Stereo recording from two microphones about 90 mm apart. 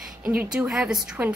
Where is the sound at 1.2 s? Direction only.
20° right (ahead or behind).